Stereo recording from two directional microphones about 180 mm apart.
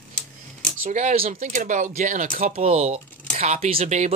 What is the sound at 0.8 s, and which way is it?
Speech, 45° right (ahead or behind).